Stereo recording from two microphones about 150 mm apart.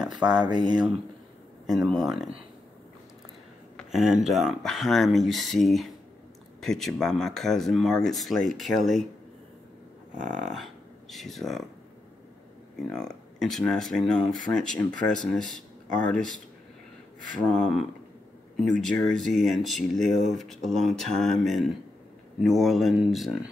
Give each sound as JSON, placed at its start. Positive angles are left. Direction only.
{"t": 0.1, "sound": "speech", "side_deg": -30}
{"t": 1.7, "sound": "speech", "side_deg": 0}
{"t": 3.7, "sound": "speech", "side_deg": 0}
{"t": 10.5, "sound": "speech", "side_deg": 0}
{"t": 12.9, "sound": "speech", "side_deg": 5}
{"t": 17.5, "sound": "speech", "side_deg": 5}